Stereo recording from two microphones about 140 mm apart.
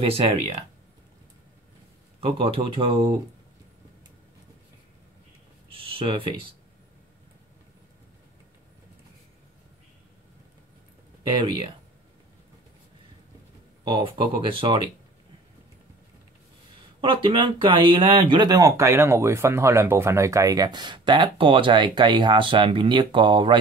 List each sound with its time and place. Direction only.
0.0 s speech: 45° right (ahead or behind)
2.1 s speech: 40° right (ahead or behind)
5.8 s speech: 40° right (ahead or behind)
11.2 s speech: 30° right (ahead or behind)
13.8 s speech: 35° right (ahead or behind)
17.0 s speech: 35° right (ahead or behind)